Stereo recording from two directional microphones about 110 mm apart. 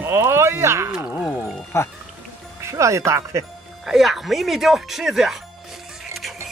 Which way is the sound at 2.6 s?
25° right (ahead or behind).